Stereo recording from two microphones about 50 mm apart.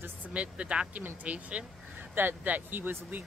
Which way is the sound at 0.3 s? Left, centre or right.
Right.